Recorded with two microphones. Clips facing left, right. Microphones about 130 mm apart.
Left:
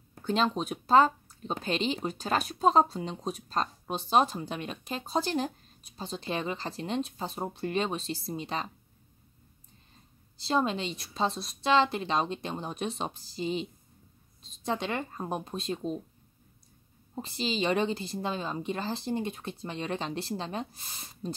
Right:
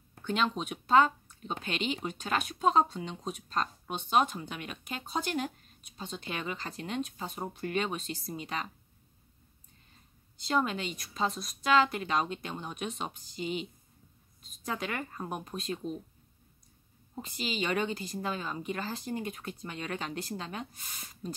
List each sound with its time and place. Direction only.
0.2 s speech: 35° left (ahead or behind)
10.3 s a woman's voice: 30° left (ahead or behind)
17.1 s a woman's voice: 30° left (ahead or behind)